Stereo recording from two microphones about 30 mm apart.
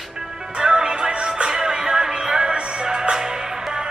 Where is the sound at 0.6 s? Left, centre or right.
Right.